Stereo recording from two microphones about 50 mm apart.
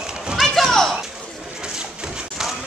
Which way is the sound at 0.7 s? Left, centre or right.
Centre.